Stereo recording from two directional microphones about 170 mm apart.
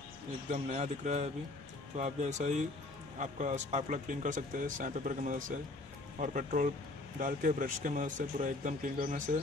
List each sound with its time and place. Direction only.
0.5 s speech: 45° right (ahead or behind)